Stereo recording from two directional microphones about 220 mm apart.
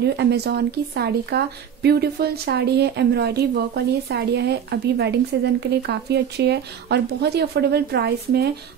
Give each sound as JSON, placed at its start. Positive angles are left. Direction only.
{"t": 0.0, "sound": "speech", "side_deg": -50}